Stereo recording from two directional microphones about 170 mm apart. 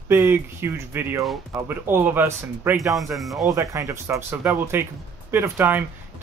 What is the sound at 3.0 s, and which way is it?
Speech, centre (ahead or behind).